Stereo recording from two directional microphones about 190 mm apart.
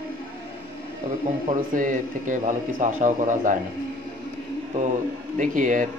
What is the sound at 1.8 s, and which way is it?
Speech, 45° right (ahead or behind).